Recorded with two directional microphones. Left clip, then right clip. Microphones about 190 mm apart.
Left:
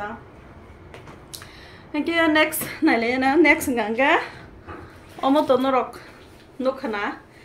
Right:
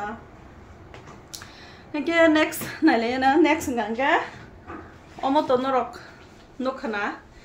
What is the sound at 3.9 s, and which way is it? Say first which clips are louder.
Speech: left 3 dB; 45° left (ahead or behind).